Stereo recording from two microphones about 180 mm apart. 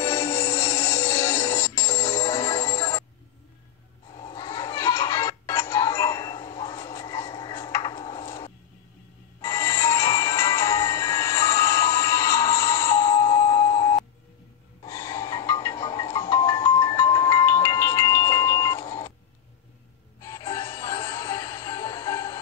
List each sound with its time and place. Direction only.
0.0 s music: 15° left (ahead or behind)
4.1 s a sound: 25° left (ahead or behind)
9.4 s music: 15° left (ahead or behind)
14.8 s snort: 20° left (ahead or behind)
20.2 s music: 20° left (ahead or behind)